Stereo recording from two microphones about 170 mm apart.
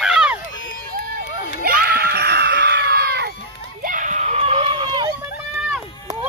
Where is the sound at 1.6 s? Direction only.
60° right (ahead or behind).